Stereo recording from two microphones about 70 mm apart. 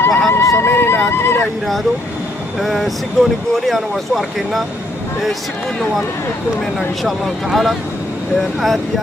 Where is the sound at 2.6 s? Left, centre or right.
Centre.